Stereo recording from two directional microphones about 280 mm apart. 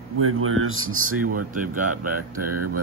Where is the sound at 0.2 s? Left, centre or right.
Right.